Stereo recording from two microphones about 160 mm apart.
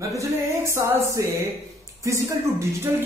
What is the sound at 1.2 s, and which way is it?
Speech, 20° right (ahead or behind).